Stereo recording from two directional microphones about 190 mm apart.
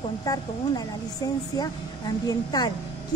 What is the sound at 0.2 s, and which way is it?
Speech, 20° left (ahead or behind).